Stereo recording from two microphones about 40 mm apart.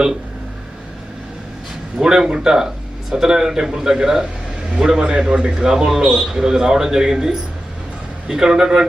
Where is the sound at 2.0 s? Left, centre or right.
Centre.